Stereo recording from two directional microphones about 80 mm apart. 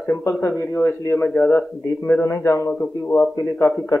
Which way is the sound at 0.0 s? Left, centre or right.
Left.